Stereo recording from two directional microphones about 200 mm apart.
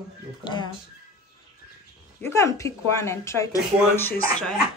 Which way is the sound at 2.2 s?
15° left (ahead or behind).